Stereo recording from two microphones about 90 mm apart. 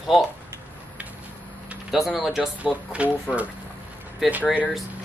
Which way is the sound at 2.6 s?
15° right (ahead or behind).